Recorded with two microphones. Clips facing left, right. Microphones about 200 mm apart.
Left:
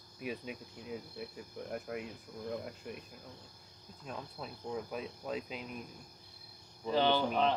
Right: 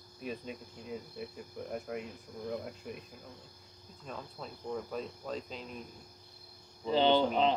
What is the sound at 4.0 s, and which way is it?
Speech, 5° left (ahead or behind).